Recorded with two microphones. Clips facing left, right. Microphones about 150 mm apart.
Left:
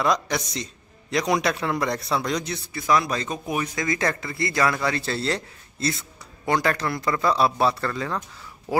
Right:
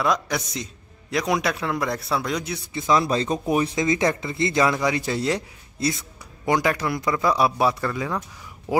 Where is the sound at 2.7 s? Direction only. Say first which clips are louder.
Right 2 dB; 25° right (ahead or behind).